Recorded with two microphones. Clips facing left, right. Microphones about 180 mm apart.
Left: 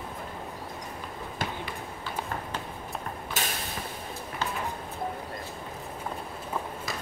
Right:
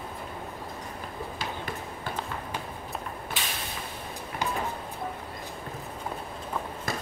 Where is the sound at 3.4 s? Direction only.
45° left (ahead or behind).